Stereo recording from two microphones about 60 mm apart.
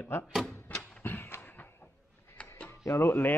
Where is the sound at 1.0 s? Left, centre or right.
Left.